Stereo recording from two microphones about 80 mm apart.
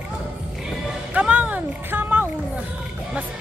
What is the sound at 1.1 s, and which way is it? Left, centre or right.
Music, right.